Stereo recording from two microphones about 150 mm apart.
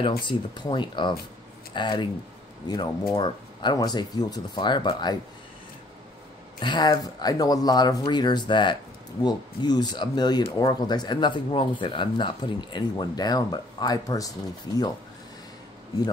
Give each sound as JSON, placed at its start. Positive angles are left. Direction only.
{"t": 0.2, "sound": "speech", "side_deg": 30}
{"t": 6.6, "sound": "speech", "side_deg": 30}